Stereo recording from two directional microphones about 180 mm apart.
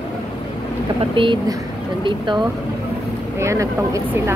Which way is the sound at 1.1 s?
25° right (ahead or behind).